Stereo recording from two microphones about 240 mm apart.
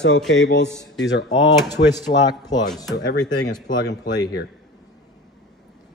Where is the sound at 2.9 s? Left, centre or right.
Left.